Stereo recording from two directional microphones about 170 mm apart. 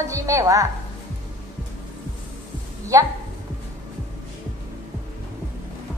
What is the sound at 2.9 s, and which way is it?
Music, 20° right (ahead or behind).